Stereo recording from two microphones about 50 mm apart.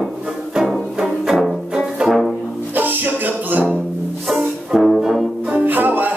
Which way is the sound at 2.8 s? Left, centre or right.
Right.